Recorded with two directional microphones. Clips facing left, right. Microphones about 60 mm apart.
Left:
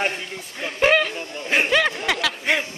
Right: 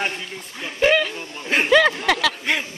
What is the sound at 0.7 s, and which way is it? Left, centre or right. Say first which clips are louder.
Speech: even; left.